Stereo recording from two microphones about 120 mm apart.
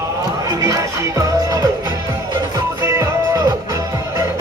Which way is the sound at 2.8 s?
30° right (ahead or behind).